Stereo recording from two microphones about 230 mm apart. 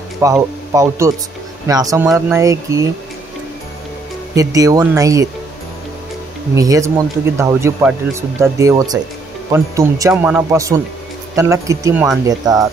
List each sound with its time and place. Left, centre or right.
0.2 s speech: centre
4.4 s speech: centre
6.5 s speech: centre